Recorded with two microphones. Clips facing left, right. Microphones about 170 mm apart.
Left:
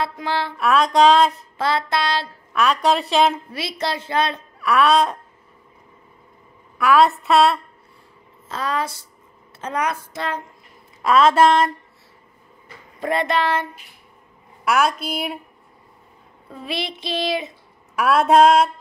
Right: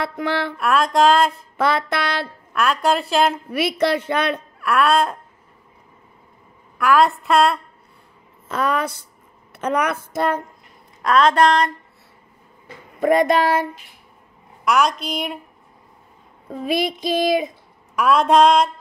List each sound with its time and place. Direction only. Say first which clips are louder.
0.0 s a woman's voice: right 1 dB; 55° right (ahead or behind)
0.6 s a woman's voice: left 2 dB; centre (ahead or behind)
1.6 s a woman's voice: right 1 dB; 55° right (ahead or behind)
2.5 s a woman's voice: left 1 dB; centre (ahead or behind)
3.5 s a woman's voice: right 7 dB; 60° right (ahead or behind)
4.6 s a woman's voice: left 2 dB; centre (ahead or behind)
6.8 s a woman's voice: left 1 dB; centre (ahead or behind)
8.5 s a woman's voice: right 3 dB; 60° right (ahead or behind)
11.0 s a woman's voice: left 1 dB; 5° left (ahead or behind)
13.0 s child singing: right 5 dB; 45° right (ahead or behind)
14.6 s a woman's voice: right 1 dB; 5° left (ahead or behind)
16.4 s child singing: right 7 dB; 45° right (ahead or behind)
17.9 s a woman's voice: even; 5° left (ahead or behind)